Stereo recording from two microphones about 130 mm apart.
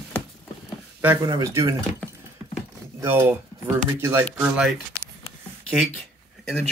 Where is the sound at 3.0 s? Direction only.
20° right (ahead or behind).